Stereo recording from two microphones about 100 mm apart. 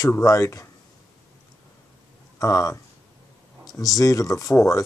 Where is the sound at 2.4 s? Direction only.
35° left (ahead or behind).